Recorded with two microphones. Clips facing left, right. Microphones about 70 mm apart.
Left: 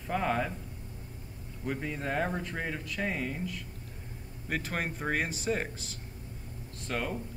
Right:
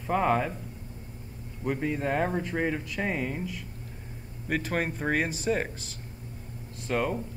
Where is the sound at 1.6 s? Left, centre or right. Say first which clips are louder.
Right 6 dB; centre.